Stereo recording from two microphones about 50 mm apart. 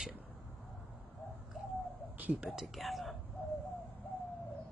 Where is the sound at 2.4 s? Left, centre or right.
Centre.